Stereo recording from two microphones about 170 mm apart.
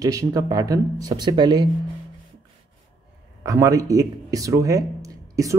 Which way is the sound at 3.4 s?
20° right (ahead or behind).